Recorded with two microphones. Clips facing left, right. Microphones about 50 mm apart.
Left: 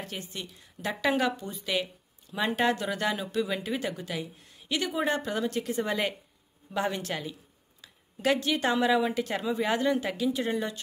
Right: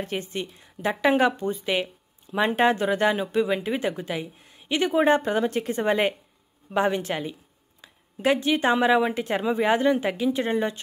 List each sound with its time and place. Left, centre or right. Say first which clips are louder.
0.0 s speech: right 8 dB; right